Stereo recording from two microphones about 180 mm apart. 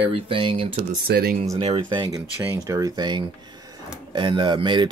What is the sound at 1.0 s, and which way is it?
Speech, 60° right (ahead or behind).